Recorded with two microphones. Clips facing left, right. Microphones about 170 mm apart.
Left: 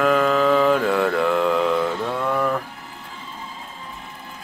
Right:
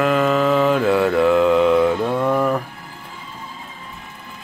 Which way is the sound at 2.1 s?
20° right (ahead or behind).